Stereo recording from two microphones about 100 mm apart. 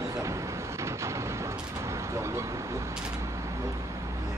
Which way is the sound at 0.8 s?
30° right (ahead or behind).